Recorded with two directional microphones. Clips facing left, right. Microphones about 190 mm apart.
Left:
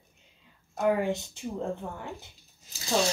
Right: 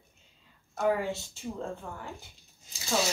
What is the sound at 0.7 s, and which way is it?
Speech, 15° left (ahead or behind).